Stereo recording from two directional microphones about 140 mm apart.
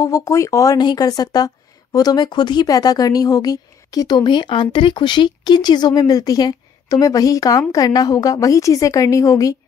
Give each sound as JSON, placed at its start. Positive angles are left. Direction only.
{"t": 0.0, "sound": "speech", "side_deg": 25}